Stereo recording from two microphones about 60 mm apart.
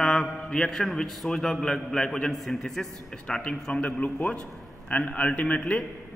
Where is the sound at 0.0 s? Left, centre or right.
Centre.